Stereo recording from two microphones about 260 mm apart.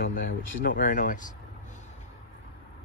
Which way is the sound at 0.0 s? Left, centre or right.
Left.